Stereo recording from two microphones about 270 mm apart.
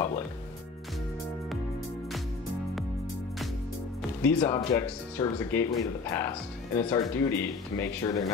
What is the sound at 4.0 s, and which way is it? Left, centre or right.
Speech, centre.